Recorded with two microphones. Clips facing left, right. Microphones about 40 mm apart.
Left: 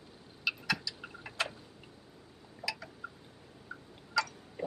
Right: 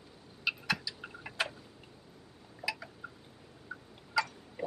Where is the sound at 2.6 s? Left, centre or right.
Centre.